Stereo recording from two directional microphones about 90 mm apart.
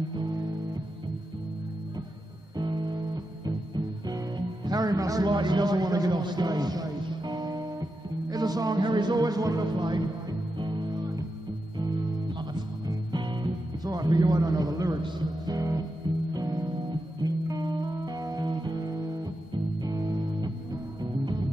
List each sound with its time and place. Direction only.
0.1 s music: 55° right (ahead or behind)
2.5 s music: 50° right (ahead or behind)
4.6 s a man's voice: 45° right (ahead or behind)
9.8 s speech: 55° right (ahead or behind)
10.6 s music: 50° right (ahead or behind)
15.5 s music: 40° right (ahead or behind)
16.0 s music: 55° right (ahead or behind)